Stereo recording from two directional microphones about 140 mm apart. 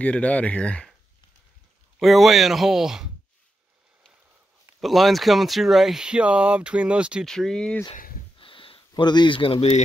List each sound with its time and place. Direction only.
0.0 s speech: 10° left (ahead or behind)
2.0 s speech: centre (ahead or behind)
4.7 s speech: centre (ahead or behind)
7.2 s speech: 5° left (ahead or behind)
8.4 s a sound: 40° left (ahead or behind)